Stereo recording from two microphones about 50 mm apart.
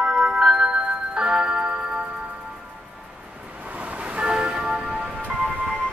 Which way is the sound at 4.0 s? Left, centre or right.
Right.